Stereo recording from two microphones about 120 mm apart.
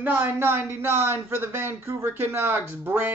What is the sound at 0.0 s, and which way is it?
Speech, 20° right (ahead or behind).